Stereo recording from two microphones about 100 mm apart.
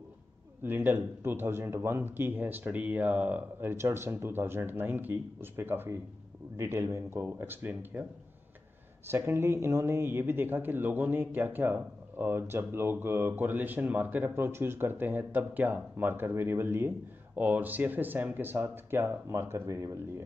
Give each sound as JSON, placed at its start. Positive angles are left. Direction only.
{"t": 0.7, "sound": "speech", "side_deg": -20}